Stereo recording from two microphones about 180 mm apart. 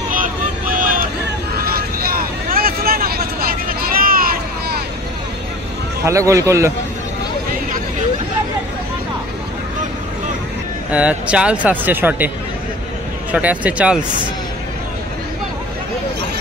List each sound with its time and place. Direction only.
0.1 s vehicle: 50° right (ahead or behind)
6.0 s speech: 15° right (ahead or behind)
10.9 s speech: 10° right (ahead or behind)
13.3 s speech: 10° right (ahead or behind)